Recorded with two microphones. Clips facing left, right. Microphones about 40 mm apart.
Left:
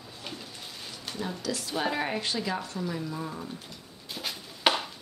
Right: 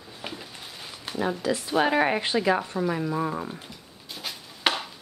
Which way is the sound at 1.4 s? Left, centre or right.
Right.